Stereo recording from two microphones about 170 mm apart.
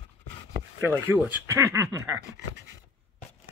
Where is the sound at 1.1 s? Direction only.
10° right (ahead or behind).